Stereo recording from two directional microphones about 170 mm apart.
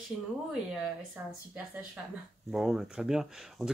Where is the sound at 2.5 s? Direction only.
5° right (ahead or behind).